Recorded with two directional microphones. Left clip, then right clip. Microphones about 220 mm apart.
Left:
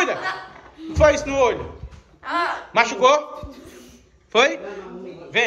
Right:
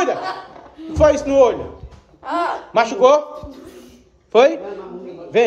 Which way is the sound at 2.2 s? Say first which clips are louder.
Right 2 dB; 25° right (ahead or behind).